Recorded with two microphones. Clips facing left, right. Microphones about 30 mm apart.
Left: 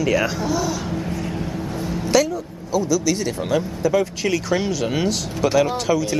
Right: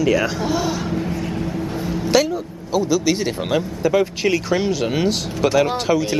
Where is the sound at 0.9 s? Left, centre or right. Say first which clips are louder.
Right 3 dB; centre.